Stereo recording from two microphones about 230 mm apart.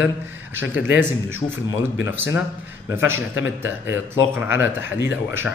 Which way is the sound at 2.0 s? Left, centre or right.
Centre.